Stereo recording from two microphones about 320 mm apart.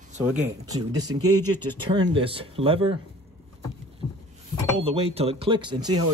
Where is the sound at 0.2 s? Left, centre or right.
Centre.